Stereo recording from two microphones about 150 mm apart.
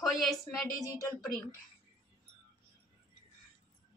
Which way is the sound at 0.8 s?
20° left (ahead or behind).